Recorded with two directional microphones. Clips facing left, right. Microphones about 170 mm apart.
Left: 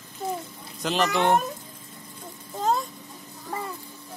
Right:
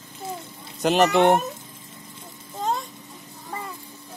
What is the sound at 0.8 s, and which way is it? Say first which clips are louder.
Speech: right 6 dB; 60° right (ahead or behind).